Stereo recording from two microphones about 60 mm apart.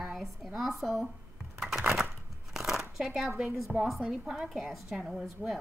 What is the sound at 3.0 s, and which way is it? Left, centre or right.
A woman's voice, centre.